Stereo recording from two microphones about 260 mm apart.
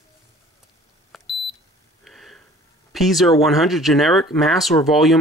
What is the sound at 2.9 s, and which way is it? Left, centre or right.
Speech, centre.